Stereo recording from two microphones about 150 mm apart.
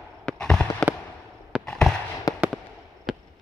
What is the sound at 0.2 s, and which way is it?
Fireworks, 5° left (ahead or behind).